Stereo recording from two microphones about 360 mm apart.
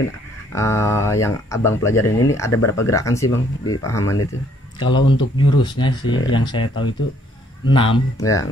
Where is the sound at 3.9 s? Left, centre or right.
Centre.